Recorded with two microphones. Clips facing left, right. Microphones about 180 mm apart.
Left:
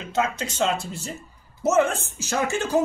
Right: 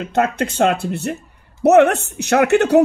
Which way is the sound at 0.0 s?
60° right (ahead or behind).